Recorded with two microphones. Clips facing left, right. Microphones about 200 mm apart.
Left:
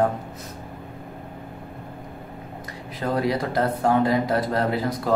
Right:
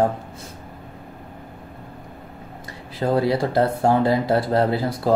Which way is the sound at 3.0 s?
30° right (ahead or behind).